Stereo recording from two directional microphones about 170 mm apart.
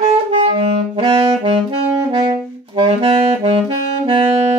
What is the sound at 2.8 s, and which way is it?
Saxophone, 35° right (ahead or behind).